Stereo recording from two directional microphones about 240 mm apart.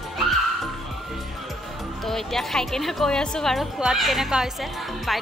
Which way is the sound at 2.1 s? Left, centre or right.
Centre.